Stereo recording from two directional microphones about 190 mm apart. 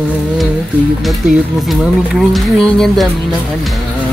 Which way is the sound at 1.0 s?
Centre (ahead or behind).